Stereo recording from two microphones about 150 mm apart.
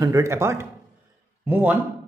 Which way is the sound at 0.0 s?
20° right (ahead or behind).